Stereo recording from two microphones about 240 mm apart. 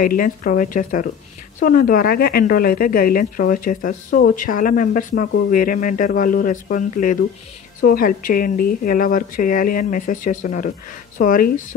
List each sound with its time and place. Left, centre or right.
0.0 s a woman's voice: left